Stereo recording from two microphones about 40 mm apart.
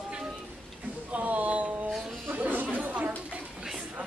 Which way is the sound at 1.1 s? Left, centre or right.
Right.